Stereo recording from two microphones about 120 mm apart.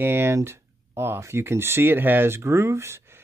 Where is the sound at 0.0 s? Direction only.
20° right (ahead or behind).